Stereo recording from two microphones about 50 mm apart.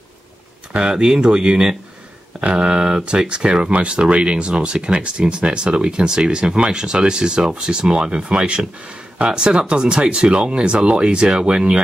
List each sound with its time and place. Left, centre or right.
0.7 s speech: centre